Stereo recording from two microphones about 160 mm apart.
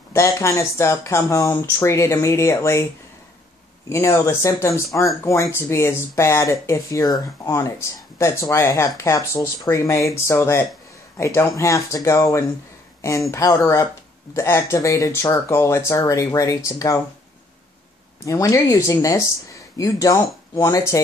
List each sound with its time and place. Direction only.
0.1 s speech: 20° left (ahead or behind)
3.9 s speech: 15° left (ahead or behind)
18.2 s speech: 20° left (ahead or behind)